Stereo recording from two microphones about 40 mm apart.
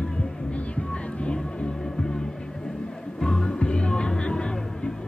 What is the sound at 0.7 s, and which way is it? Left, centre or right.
Music, left.